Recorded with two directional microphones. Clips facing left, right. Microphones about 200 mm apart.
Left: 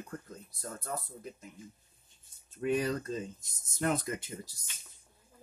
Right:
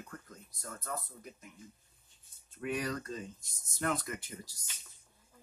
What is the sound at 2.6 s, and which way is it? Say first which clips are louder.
Speech: left 5 dB; 25° left (ahead or behind).